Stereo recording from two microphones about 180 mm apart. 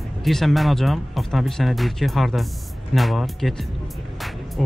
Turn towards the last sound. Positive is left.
turn(degrees=0)  # may be behind; listen again after turning